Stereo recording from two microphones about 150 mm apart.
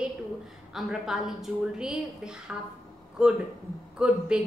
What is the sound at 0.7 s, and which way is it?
A woman's voice, centre (ahead or behind).